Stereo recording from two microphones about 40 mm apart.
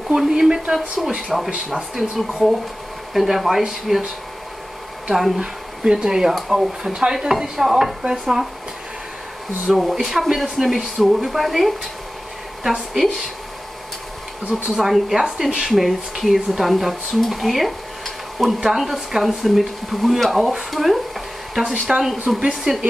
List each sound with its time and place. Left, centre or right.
0.1 s speech: centre
0.7 s speech: centre
5.4 s speech: right
9.8 s speech: centre
14.5 s speech: centre
16.3 s stir: centre
18.6 s speech: centre
21.9 s a woman's voice: centre